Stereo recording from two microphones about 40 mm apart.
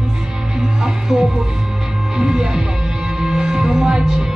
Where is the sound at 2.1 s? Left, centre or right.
Centre.